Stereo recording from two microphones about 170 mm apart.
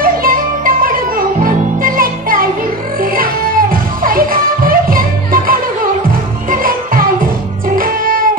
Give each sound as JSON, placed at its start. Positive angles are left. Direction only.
{"t": 0.0, "sound": "music", "side_deg": -55}